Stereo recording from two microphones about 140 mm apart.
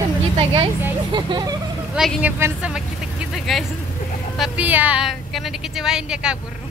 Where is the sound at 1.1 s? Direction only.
35° right (ahead or behind).